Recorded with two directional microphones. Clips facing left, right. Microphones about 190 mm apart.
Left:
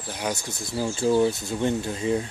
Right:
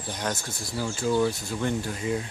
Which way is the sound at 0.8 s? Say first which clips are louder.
Left 4 dB; 25° left (ahead or behind).